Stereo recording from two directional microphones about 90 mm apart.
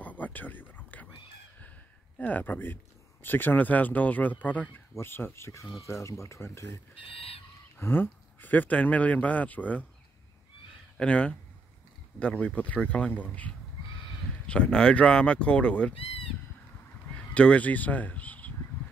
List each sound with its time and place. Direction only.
0.0 s a sound: 20° left (ahead or behind)
2.1 s speech: 15° left (ahead or behind)
7.0 s a sound: 90° left
7.8 s speech: 25° left (ahead or behind)
11.0 s speech: 15° left (ahead or behind)
15.9 s honk: 90° left
17.3 s speech: 15° left (ahead or behind)